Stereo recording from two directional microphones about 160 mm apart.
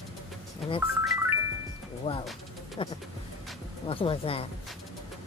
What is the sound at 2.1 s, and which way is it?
Speech, 35° left (ahead or behind).